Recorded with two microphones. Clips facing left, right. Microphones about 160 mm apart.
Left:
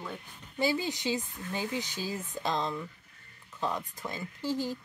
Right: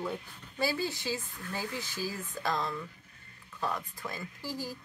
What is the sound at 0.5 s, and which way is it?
Speech, 20° left (ahead or behind).